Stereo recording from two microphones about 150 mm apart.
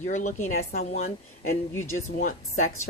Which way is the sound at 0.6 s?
70° left (ahead or behind).